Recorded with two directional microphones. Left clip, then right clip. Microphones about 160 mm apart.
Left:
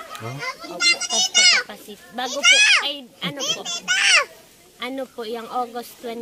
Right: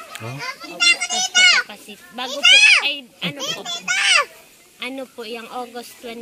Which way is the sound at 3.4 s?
55° right (ahead or behind).